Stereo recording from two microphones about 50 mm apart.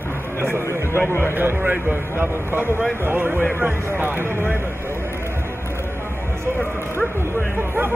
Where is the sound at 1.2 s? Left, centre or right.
Right.